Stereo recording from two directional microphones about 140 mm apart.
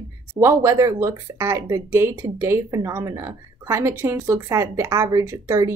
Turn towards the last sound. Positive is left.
turn(degrees=-20)  # may be behind; listen again after turning